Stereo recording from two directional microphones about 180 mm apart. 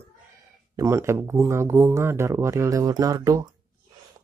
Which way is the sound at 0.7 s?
15° right (ahead or behind).